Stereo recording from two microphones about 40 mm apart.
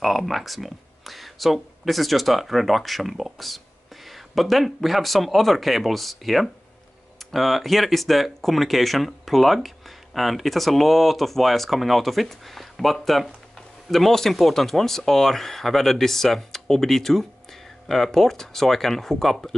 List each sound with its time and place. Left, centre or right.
0.0 s speech: centre